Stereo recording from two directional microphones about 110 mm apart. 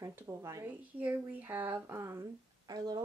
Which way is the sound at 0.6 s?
15° right (ahead or behind).